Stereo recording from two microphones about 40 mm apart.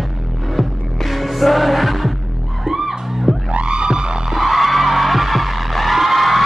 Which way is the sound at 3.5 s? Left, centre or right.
Right.